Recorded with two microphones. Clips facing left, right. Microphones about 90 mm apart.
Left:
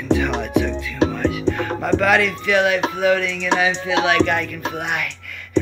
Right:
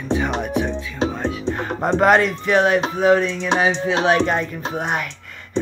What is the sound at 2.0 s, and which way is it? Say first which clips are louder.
Speech: right 5 dB; 40° right (ahead or behind).